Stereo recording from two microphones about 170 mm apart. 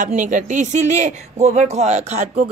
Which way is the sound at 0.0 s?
50° right (ahead or behind).